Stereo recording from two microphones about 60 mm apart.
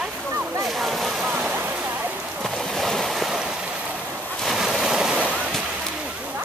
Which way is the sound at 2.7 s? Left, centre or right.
Centre.